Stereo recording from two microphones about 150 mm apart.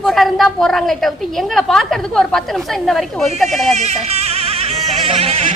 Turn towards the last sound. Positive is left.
turn(degrees=-45)  # may be behind; listen again after turning